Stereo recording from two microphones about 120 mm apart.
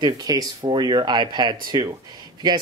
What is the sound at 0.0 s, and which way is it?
Speech, 30° right (ahead or behind).